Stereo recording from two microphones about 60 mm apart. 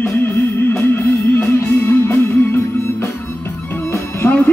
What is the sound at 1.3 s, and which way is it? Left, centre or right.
Music, left.